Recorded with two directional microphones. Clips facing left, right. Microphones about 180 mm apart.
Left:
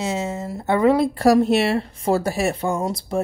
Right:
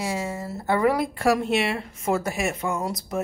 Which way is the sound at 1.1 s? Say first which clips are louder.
Left 6 dB; 35° left (ahead or behind).